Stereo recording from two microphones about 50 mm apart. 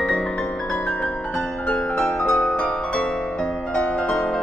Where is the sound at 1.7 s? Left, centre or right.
Left.